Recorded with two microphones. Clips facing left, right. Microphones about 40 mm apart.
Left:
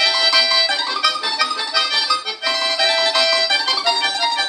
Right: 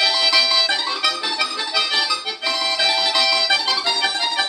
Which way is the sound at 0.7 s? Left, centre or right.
Centre.